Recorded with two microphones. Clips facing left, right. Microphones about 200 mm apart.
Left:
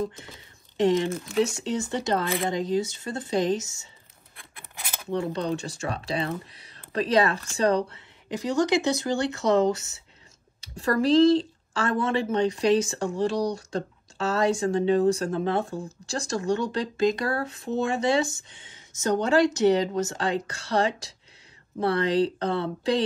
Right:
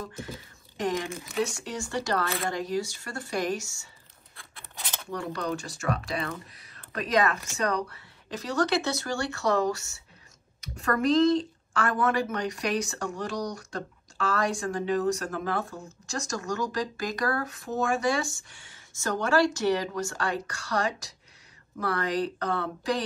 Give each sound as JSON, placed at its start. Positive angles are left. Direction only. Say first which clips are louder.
{"t": 0.0, "sound": "a woman's voice", "louder": "left 6 dB", "side_deg": 25}
{"t": 4.4, "sound": "scissors", "louder": "left 1 dB", "side_deg": 10}
{"t": 5.0, "sound": "a woman's voice", "louder": "left 5 dB", "side_deg": 25}
{"t": 8.3, "sound": "a woman's voice", "louder": "left 4 dB", "side_deg": 15}
{"t": 10.6, "sound": "a woman's voice", "louder": "left 3 dB", "side_deg": 30}